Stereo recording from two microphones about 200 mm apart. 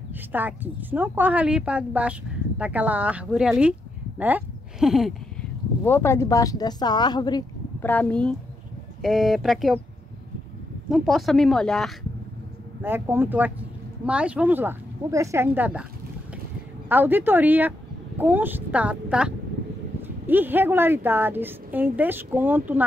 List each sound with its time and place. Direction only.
0.1 s a woman's voice: 10° right (ahead or behind)
5.9 s speech: 10° left (ahead or behind)
7.8 s speech: 10° left (ahead or behind)
10.9 s speech: centre (ahead or behind)
12.8 s a woman's voice: 10° right (ahead or behind)
16.9 s a woman's voice: 10° right (ahead or behind)